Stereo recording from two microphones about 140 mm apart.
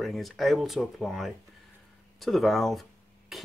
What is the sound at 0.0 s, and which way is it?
Speech, centre (ahead or behind).